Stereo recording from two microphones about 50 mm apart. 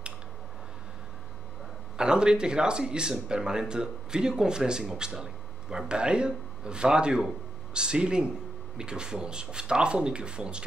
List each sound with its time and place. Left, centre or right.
2.0 s speech: centre